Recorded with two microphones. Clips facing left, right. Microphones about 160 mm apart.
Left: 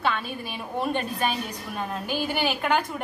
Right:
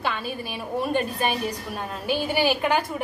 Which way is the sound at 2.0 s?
5° right (ahead or behind).